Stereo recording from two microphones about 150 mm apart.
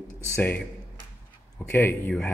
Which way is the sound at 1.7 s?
15° left (ahead or behind).